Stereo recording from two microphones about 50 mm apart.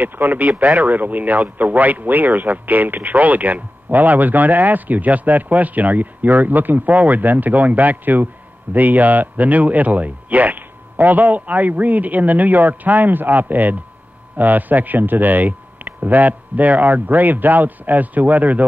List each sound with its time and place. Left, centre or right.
0.0 s speech: right